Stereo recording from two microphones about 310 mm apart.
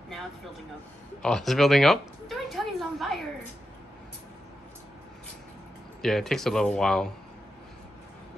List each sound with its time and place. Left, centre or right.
1.2 s speech: centre
6.0 s speech: centre